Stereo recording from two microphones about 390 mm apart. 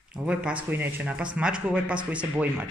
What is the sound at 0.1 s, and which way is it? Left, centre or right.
Speech, centre.